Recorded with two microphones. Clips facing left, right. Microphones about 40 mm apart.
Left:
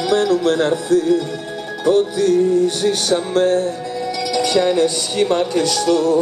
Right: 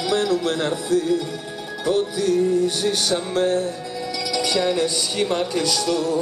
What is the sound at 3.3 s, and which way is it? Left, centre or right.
Music, left.